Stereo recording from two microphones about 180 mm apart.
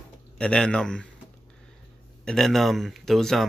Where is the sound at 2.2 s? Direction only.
5° left (ahead or behind).